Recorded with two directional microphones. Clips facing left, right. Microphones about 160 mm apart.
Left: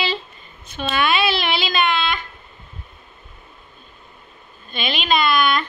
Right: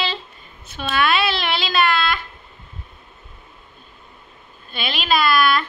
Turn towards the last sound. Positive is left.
turn(degrees=-5)  # may be behind; listen again after turning